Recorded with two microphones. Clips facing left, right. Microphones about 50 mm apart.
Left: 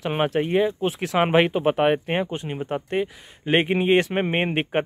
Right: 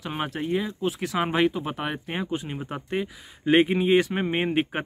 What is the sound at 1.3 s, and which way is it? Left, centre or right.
Speech, left.